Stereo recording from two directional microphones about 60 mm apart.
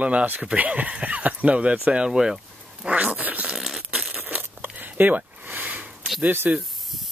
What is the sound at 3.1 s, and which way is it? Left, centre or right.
Zipper, right.